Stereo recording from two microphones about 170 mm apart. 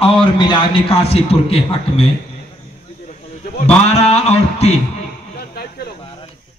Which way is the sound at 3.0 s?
45° left (ahead or behind).